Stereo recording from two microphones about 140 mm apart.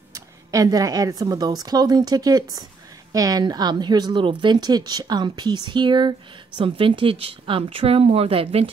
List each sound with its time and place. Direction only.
0.1 s a woman's voice: 25° right (ahead or behind); by 8.6 s 45° right (ahead or behind)